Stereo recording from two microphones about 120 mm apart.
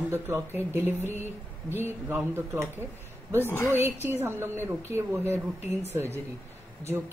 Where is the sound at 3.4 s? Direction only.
20° left (ahead or behind).